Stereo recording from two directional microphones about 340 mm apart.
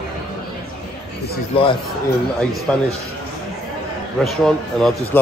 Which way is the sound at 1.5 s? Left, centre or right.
Centre.